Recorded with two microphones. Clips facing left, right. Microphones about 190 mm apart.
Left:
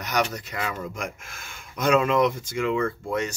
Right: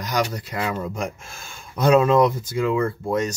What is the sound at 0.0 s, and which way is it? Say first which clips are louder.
Speech: right 2 dB; 30° right (ahead or behind).